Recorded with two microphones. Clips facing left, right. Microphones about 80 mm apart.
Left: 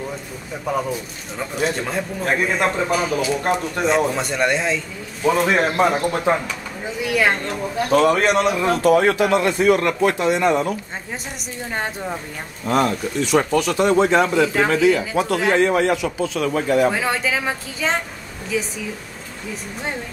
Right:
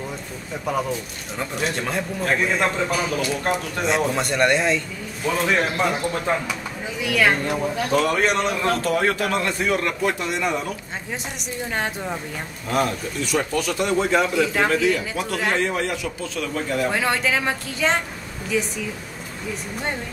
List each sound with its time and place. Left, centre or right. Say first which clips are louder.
0.7 s a man's voice: left 2 dB; centre
5.3 s a man's voice: left 3 dB; centre
10.4 s speech: left 5 dB; left
11.7 s speech: left 1 dB; centre
12.6 s speech: left 4 dB; left
13.3 s speech: left 5 dB; left
13.7 s speech: left 4 dB; left
14.3 s a man's voice: left 3 dB; centre
15.6 s speech: left 7 dB; left
16.0 s a man's voice: left 6 dB; centre
16.9 s speech: even; centre